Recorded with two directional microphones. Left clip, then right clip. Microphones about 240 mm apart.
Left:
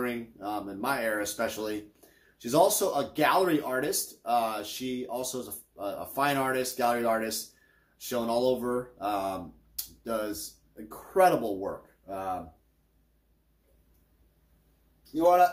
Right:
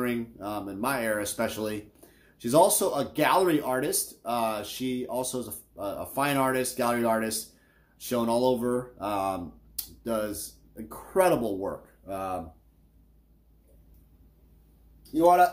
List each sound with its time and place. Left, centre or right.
0.0 s speech: right
15.1 s speech: right